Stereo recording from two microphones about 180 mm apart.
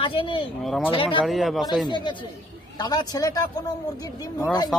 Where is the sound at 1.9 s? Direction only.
25° left (ahead or behind).